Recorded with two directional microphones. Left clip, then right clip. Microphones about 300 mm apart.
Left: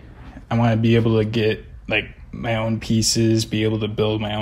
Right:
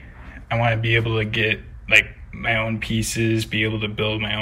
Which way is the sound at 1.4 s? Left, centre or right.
Centre.